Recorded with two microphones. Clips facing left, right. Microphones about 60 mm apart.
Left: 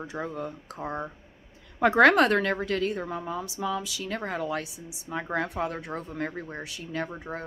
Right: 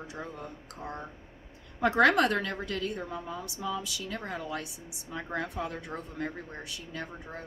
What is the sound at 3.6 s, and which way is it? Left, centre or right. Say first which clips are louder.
Speech: left 3 dB; left.